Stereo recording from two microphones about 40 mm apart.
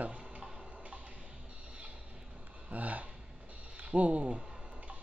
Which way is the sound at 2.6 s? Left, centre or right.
Right.